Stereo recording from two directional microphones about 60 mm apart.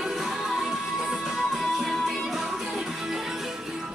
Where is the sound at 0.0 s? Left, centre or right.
Centre.